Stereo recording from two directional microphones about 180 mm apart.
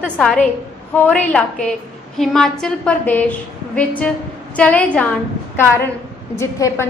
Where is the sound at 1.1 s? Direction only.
5° left (ahead or behind).